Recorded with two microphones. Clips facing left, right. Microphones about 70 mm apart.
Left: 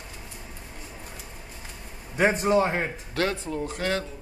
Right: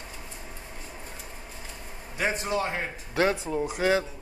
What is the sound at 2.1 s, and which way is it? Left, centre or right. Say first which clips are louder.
Speech: left 7 dB; left.